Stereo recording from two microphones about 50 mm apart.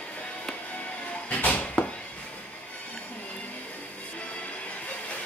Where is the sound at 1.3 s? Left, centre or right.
Left.